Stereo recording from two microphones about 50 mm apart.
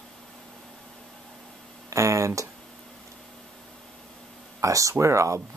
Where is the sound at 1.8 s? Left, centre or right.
Right.